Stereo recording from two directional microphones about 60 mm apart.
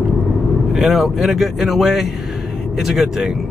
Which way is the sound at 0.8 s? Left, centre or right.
Centre.